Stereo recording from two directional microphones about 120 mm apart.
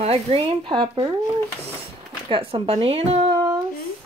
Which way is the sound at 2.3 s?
45° right (ahead or behind).